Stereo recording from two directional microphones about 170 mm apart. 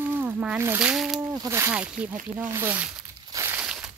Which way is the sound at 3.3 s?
15° right (ahead or behind).